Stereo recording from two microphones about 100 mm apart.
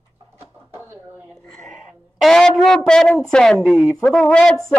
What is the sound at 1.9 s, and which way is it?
A woman's voice, 5° left (ahead or behind).